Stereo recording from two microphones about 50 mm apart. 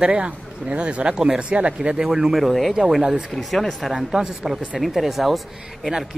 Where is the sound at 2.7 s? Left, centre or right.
Centre.